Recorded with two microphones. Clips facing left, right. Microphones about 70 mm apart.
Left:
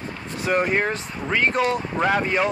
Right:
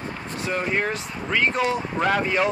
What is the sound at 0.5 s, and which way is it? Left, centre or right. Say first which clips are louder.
Speech: left 6 dB; left.